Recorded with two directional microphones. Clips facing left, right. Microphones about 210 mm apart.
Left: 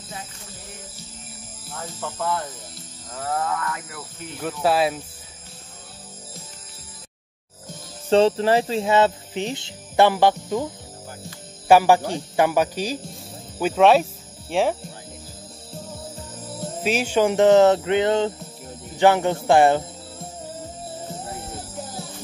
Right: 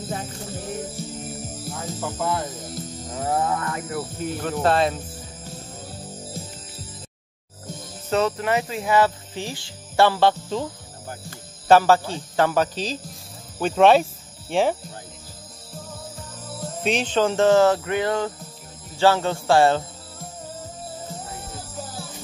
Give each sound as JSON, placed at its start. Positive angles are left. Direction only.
{"t": 0.1, "sound": "music", "side_deg": -45}
{"t": 1.7, "sound": "speech", "side_deg": -10}
{"t": 4.4, "sound": "speech", "side_deg": 5}
{"t": 8.1, "sound": "speech", "side_deg": 30}
{"t": 11.6, "sound": "speech", "side_deg": 15}
{"t": 16.8, "sound": "speech", "side_deg": 10}